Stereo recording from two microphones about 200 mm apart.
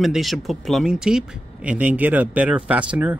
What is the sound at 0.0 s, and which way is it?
Speech, centre (ahead or behind).